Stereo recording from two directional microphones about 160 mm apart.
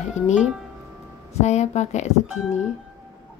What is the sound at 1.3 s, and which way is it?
Speech, 45° left (ahead or behind).